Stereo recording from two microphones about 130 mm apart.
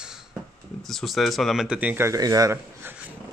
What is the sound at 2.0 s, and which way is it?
Speech, 25° right (ahead or behind).